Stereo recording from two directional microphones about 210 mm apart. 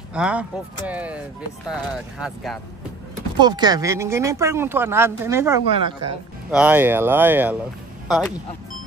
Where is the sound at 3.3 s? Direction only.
20° right (ahead or behind); by 8.3 s 5° right (ahead or behind).